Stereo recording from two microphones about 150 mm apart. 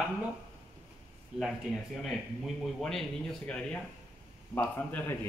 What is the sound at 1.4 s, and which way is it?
A man's voice, centre (ahead or behind).